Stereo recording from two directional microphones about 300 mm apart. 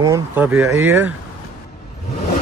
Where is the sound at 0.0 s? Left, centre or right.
Centre.